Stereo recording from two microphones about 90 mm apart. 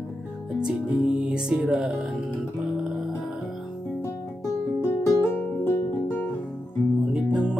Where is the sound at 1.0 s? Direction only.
5° right (ahead or behind).